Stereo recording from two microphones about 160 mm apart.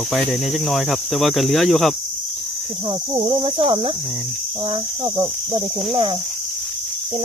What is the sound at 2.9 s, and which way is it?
Speech, 30° right (ahead or behind).